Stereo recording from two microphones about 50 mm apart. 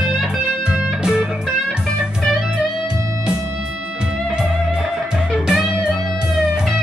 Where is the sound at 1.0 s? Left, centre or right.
Centre.